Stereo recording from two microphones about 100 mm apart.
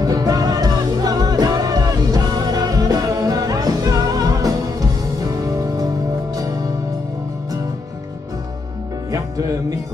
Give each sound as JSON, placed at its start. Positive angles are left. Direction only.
{"t": 0.0, "sound": "music", "side_deg": -40}
{"t": 9.1, "sound": "music", "side_deg": -35}